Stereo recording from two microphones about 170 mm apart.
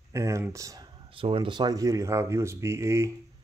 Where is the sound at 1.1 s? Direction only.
30° right (ahead or behind); by 3.1 s 15° right (ahead or behind).